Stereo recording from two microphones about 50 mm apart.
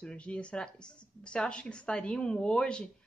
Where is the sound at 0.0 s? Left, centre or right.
Left.